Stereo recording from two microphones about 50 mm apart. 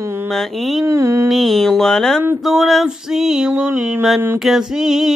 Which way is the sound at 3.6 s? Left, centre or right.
Centre.